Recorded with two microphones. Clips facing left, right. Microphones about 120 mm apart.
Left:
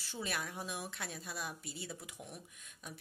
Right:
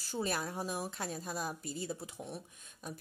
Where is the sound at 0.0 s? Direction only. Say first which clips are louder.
Right 5 dB; 40° right (ahead or behind).